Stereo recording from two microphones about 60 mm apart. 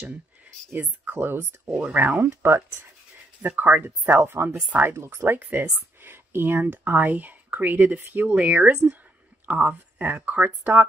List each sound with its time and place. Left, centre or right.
1.1 s speech: right
1.7 s speech: centre
2.0 s speech: right
2.4 s speech: right
3.4 s speech: right
4.9 s speech: right